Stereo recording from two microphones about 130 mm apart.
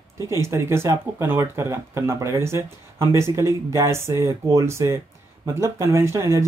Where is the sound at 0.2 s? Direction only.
20° right (ahead or behind).